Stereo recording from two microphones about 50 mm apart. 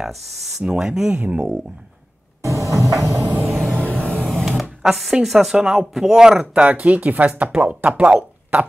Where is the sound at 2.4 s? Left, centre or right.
Right.